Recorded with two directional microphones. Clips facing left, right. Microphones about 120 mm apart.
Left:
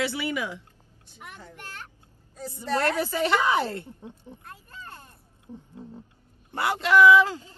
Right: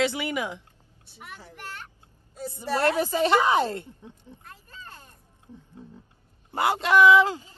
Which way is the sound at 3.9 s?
15° left (ahead or behind).